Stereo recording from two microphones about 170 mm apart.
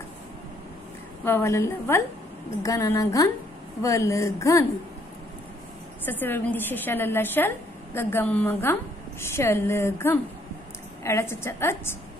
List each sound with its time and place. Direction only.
1.2 s a woman's voice: 15° left (ahead or behind)
6.0 s a woman's voice: 10° left (ahead or behind)